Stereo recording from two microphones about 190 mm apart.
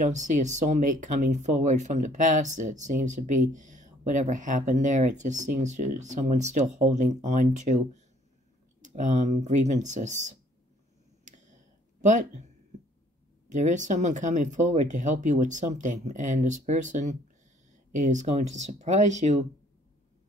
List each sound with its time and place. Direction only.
0.0 s speech: 40° right (ahead or behind)
11.2 s a sound: 40° right (ahead or behind)
12.0 s speech: 40° right (ahead or behind)
13.5 s speech: 40° right (ahead or behind)